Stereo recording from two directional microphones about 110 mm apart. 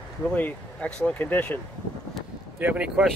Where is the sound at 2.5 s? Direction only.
15° right (ahead or behind).